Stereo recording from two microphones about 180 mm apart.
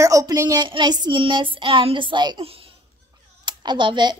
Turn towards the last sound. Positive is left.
turn(degrees=-25)  # may be behind; listen again after turning